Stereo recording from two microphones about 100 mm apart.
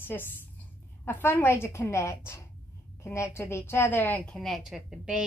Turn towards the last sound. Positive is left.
turn(degrees=-5)  # may be behind; listen again after turning